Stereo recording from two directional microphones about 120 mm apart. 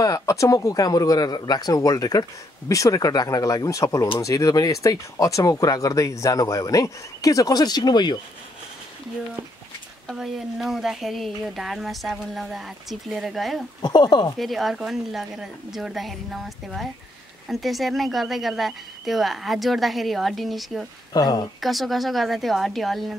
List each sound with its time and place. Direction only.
0.0 s speech: 30° left (ahead or behind)
10.1 s speech: centre (ahead or behind)
13.8 s speech: 35° left (ahead or behind)
14.4 s speech: centre (ahead or behind)
21.1 s speech: 35° left (ahead or behind)
21.5 s speech: centre (ahead or behind)